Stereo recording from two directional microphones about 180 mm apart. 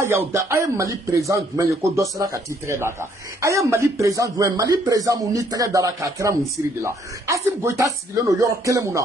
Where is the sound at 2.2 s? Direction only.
15° right (ahead or behind).